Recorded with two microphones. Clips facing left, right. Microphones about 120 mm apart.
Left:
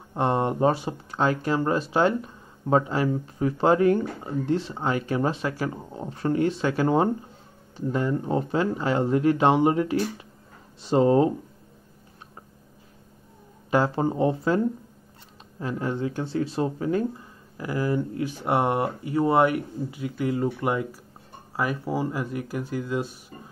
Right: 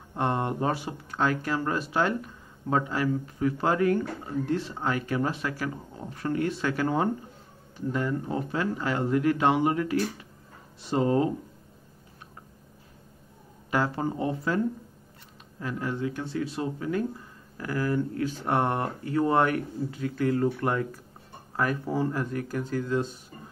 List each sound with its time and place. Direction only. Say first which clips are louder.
0.1 s speech: left 4 dB; 20° left (ahead or behind)
13.7 s speech: left 4 dB; 25° left (ahead or behind)
15.6 s speech: left 3 dB; 25° left (ahead or behind)
17.6 s speech: left 2 dB; 15° left (ahead or behind)